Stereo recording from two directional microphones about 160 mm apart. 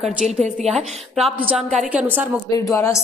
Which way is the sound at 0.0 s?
Centre (ahead or behind).